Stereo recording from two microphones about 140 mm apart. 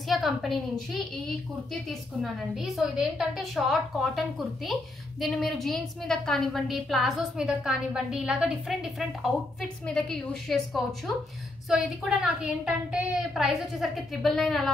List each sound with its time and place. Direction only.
0.1 s a woman's voice: centre (ahead or behind)
2.5 s a woman's voice: centre (ahead or behind)
9.2 s a woman's voice: 5° left (ahead or behind)